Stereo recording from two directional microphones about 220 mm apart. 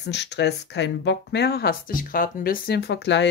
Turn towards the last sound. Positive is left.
turn(degrees=50)  # may be behind; listen again after turning